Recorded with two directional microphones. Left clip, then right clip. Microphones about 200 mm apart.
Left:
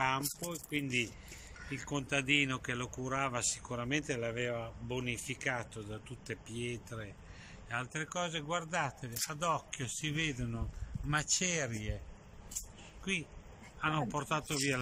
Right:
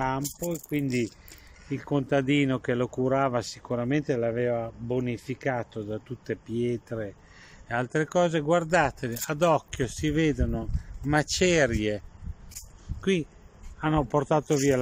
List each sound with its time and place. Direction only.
0.0 s speech: 20° right (ahead or behind); by 12.0 s 50° right (ahead or behind)
13.0 s speech: 45° right (ahead or behind)